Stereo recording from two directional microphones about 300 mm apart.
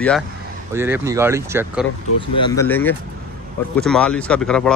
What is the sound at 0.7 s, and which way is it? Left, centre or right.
Speech, centre.